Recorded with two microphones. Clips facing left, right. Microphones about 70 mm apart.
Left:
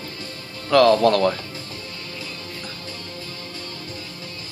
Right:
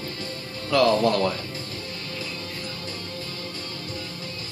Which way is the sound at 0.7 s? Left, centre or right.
Left.